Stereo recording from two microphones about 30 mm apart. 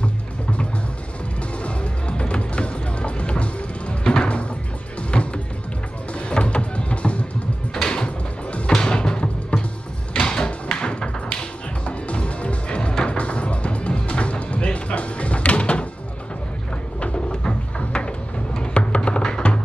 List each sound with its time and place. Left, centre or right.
0.0 s music: left
4.0 s music: left
7.7 s door: left
8.5 s music: left
8.7 s music: left
9.5 s music: left
10.1 s music: left
12.9 s music: left
13.2 s music: left
17.0 s a sound: left
18.6 s music: left